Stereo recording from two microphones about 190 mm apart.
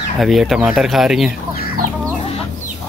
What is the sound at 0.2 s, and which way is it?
Speech, centre (ahead or behind).